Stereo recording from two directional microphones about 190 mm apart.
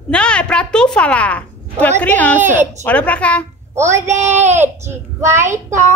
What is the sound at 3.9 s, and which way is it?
A child's voice, 15° right (ahead or behind).